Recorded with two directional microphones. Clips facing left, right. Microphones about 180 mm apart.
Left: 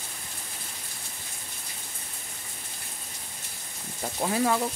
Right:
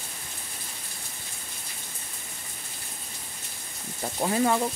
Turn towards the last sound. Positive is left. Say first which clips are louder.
# right 1 dB
turn(degrees=-5)  # may be behind; listen again after turning